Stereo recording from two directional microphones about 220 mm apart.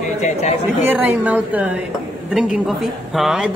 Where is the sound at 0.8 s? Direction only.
10° right (ahead or behind).